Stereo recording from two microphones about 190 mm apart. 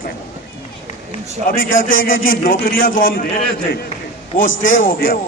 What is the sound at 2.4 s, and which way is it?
Speech, 45° left (ahead or behind).